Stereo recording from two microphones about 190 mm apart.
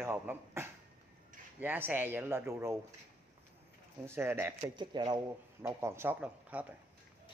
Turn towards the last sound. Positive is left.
turn(degrees=-10)  # may be behind; listen again after turning